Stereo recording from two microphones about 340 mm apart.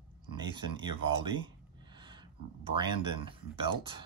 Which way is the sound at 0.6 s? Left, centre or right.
Centre.